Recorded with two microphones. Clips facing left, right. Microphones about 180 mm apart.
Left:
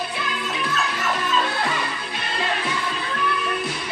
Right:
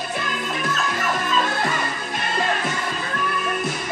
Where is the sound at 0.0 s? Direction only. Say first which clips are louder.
Right 1 dB; 45° right (ahead or behind).